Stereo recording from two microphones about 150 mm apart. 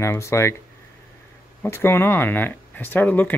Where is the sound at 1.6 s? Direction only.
15° left (ahead or behind).